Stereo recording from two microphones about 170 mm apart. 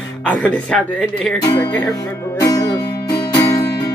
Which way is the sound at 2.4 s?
20° left (ahead or behind).